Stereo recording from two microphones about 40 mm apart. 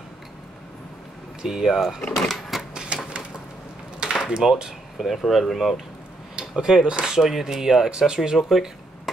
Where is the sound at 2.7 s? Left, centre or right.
Right.